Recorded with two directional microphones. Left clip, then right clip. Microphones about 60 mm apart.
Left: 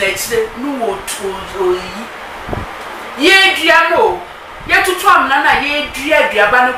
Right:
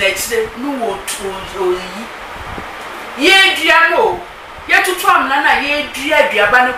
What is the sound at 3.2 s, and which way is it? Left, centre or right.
Speech, centre.